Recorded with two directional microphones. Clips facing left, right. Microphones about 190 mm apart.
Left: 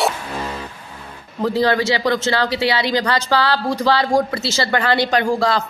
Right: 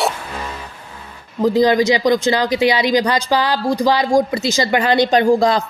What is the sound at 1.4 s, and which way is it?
A woman's voice, 15° right (ahead or behind).